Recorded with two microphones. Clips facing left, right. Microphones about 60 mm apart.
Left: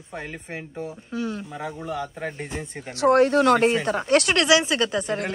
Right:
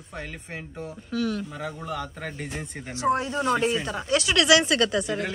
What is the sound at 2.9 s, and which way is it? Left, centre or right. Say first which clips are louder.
Speech: left 8 dB; left.